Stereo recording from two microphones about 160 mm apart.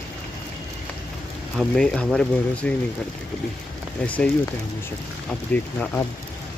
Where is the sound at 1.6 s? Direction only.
5° left (ahead or behind).